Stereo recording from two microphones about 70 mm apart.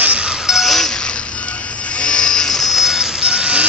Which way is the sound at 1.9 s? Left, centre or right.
Centre.